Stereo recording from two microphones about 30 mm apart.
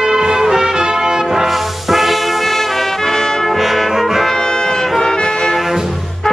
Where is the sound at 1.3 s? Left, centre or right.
Centre.